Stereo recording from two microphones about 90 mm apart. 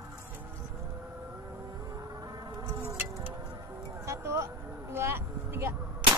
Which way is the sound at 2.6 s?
35° right (ahead or behind).